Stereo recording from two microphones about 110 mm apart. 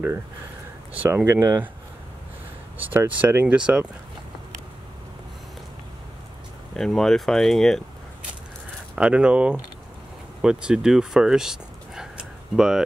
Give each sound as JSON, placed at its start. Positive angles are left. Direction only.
{"t": 0.9, "sound": "speech", "side_deg": -15}
{"t": 2.8, "sound": "speech", "side_deg": -15}
{"t": 6.8, "sound": "speech", "side_deg": 5}
{"t": 8.9, "sound": "speech", "side_deg": -10}